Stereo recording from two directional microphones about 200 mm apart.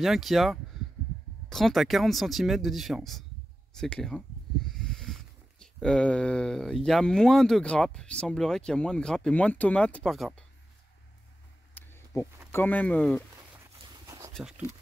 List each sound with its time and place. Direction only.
0.0 s speech: centre (ahead or behind)
11.7 s a sound: 10° left (ahead or behind)
12.4 s speech: 10° left (ahead or behind)
13.8 s dog: 20° right (ahead or behind)